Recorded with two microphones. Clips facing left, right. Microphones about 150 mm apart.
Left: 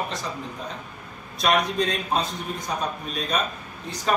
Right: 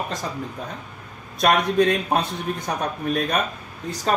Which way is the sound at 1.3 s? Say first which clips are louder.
Right 4 dB; 60° right (ahead or behind).